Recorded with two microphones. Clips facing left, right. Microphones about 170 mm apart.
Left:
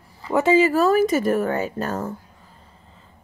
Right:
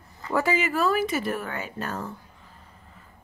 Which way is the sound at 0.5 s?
40° left (ahead or behind).